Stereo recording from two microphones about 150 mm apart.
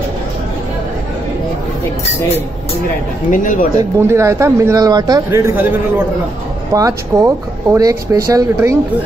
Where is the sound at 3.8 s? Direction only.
20° right (ahead or behind).